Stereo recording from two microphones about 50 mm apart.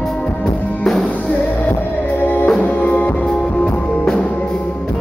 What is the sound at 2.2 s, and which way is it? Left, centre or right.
Music, left.